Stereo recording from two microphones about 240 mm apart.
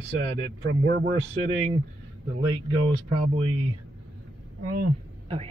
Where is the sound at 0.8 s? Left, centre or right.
Right.